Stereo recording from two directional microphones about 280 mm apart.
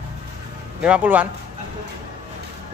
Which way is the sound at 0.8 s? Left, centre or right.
Centre.